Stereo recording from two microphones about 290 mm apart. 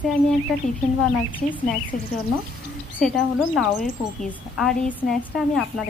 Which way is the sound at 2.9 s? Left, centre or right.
Centre.